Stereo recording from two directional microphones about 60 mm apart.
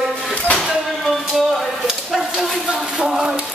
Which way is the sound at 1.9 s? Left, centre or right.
Centre.